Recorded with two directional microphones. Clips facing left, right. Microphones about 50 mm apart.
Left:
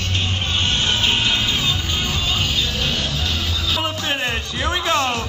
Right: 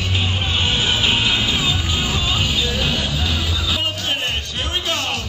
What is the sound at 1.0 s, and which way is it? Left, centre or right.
Music, centre.